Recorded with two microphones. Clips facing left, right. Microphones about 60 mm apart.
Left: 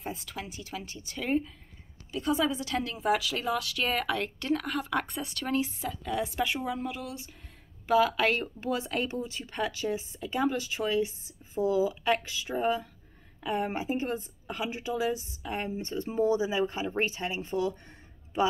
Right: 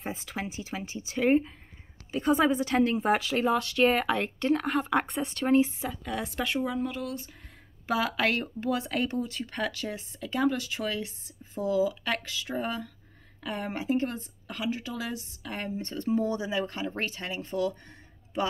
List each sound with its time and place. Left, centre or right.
0.0 s a woman's voice: centre; by 3.2 s right
3.3 s speech: centre
5.0 s speech: centre
7.8 s speech: centre; by 17.7 s left